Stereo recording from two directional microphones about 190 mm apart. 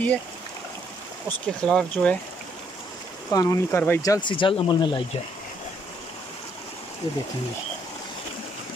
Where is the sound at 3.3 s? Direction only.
15° left (ahead or behind).